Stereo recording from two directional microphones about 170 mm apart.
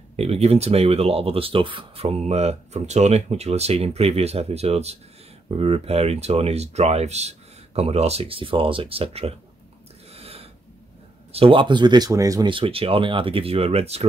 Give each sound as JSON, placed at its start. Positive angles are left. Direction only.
{"t": 0.1, "sound": "speech", "side_deg": -40}
{"t": 10.1, "sound": "snort", "side_deg": -35}
{"t": 11.3, "sound": "speech", "side_deg": -30}